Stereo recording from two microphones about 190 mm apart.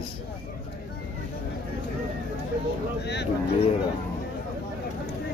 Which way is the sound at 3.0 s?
60° left (ahead or behind).